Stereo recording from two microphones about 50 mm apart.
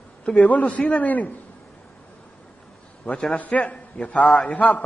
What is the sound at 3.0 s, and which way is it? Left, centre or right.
Speech, left.